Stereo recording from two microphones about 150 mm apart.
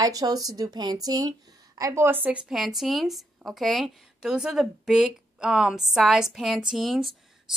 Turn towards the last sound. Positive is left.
turn(degrees=0)  # may be behind; listen again after turning